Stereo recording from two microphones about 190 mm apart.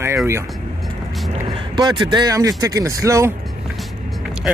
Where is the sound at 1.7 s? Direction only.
25° right (ahead or behind).